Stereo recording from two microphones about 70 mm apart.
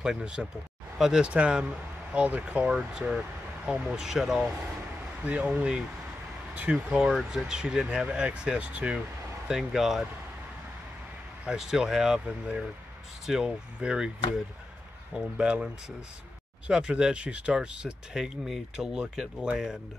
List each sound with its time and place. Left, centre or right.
0.0 s speech: centre
1.2 s speech: centre
5.2 s speech: centre
7.1 s speech: centre
9.5 s speech: centre
11.4 s speech: centre
13.3 s speech: centre